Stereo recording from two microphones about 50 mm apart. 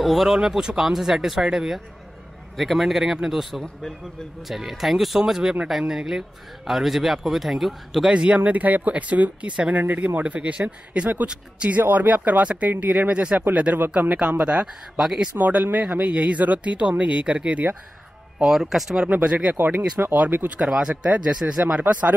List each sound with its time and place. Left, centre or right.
0.0 s speech: centre
8.1 s speech: right
8.5 s speech: right
11.7 s speech: right
15.0 s speech: centre
15.3 s speech: right
18.4 s speech: centre
19.0 s speech: right